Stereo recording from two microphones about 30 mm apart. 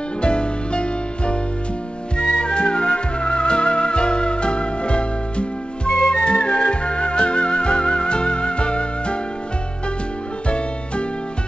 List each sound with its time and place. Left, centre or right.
0.2 s music: left